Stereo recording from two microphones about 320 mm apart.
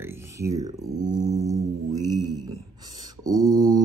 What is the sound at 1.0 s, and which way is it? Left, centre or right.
Mantra, right.